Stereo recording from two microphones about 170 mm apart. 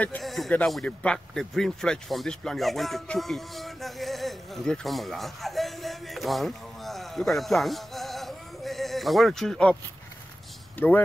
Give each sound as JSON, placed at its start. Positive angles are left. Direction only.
{"t": 0.0, "sound": "speech", "side_deg": 5}